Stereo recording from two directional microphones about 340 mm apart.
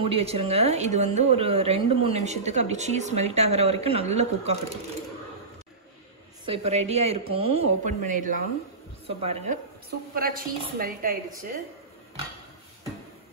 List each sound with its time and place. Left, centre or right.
0.0 s speech: centre
6.4 s a woman's voice: centre